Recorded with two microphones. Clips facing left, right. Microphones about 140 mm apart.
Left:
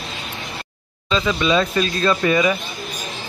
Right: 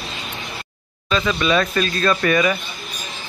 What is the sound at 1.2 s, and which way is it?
Speech, 15° left (ahead or behind).